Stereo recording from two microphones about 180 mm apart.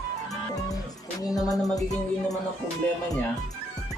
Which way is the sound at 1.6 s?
Centre (ahead or behind).